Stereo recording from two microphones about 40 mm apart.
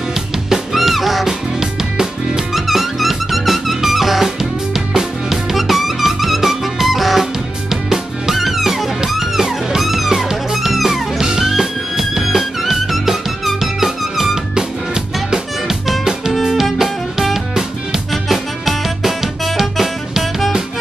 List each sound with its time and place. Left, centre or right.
0.7 s music: centre
1.2 s music: centre
16.0 s music: centre
16.3 s music: centre